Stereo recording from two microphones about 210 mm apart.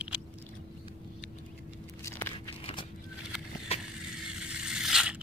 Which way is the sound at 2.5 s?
25° left (ahead or behind).